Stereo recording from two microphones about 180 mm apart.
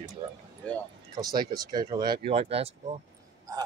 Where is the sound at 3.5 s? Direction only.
20° right (ahead or behind).